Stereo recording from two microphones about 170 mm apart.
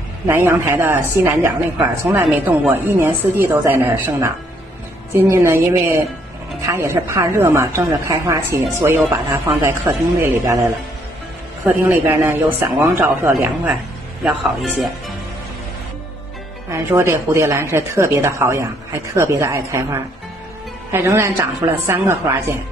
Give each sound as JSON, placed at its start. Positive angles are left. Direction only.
{"t": 0.3, "sound": "a woman's voice", "side_deg": -15}
{"t": 11.6, "sound": "a woman's voice", "side_deg": -10}
{"t": 16.7, "sound": "a woman's voice", "side_deg": -15}